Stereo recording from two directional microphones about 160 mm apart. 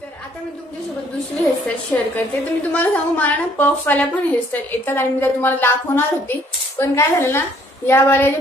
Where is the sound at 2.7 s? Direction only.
10° left (ahead or behind).